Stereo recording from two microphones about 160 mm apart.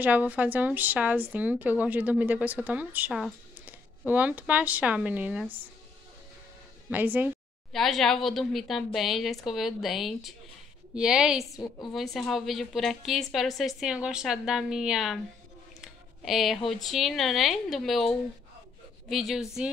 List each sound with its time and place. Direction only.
0.0 s a woman's voice: 10° right (ahead or behind)
6.9 s a woman's voice: 10° right (ahead or behind)
7.7 s a woman's voice: centre (ahead or behind)
11.5 s a woman's voice: 25° left (ahead or behind)
11.9 s a woman's voice: centre (ahead or behind)